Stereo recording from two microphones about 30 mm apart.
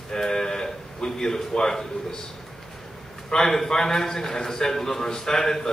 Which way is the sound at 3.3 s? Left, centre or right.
Centre.